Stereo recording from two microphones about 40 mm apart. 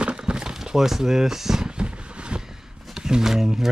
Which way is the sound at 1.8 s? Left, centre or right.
Right.